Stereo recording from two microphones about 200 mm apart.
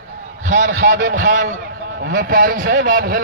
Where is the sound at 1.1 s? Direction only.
40° right (ahead or behind).